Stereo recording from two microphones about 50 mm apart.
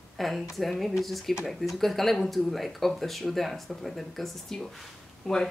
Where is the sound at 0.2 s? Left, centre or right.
Centre.